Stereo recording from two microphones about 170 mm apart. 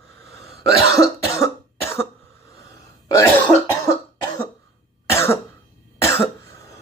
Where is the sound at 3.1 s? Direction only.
20° left (ahead or behind).